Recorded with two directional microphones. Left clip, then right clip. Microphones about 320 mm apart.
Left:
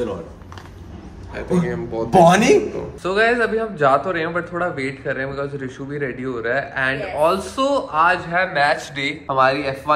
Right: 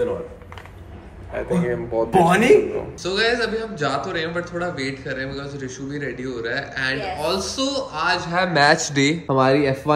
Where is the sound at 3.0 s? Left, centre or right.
Centre.